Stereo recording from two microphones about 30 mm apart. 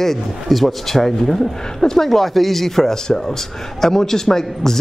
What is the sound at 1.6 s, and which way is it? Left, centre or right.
Speech, centre.